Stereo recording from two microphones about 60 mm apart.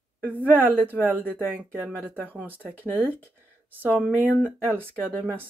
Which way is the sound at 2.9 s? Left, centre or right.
Right.